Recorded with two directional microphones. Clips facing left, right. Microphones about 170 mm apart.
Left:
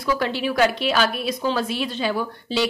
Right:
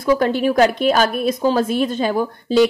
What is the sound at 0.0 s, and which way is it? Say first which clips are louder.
A woman's voice: right 7 dB; 50° right (ahead or behind).